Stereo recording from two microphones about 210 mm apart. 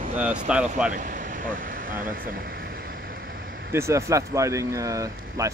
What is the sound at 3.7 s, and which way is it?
Speech, 15° right (ahead or behind).